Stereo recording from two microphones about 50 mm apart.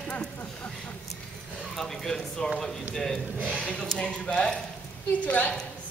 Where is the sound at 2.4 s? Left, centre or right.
Centre.